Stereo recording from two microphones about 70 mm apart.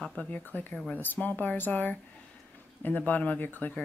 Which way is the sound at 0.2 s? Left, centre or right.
Left.